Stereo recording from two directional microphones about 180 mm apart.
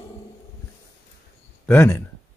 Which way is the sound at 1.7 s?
10° left (ahead or behind).